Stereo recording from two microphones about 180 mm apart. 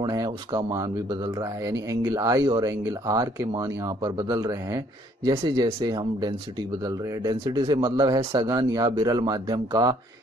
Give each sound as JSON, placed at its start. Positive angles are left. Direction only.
{"t": 0.0, "sound": "speech", "side_deg": -20}
{"t": 5.4, "sound": "speech", "side_deg": -30}